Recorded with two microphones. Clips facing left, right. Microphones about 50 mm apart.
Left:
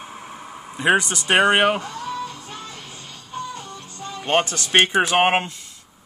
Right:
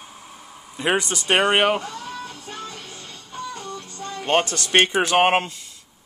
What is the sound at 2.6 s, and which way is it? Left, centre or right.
Music, centre.